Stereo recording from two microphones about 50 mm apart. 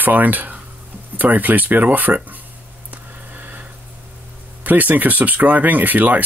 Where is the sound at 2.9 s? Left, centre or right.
Right.